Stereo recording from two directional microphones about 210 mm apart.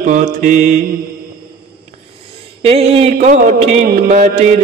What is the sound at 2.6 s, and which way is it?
Mantra, 30° right (ahead or behind).